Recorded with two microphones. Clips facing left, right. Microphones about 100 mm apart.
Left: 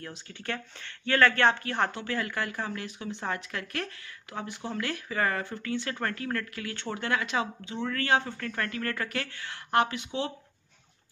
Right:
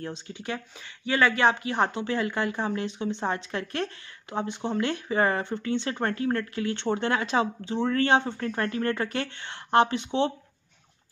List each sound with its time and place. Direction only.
0.0 s speech: 20° right (ahead or behind)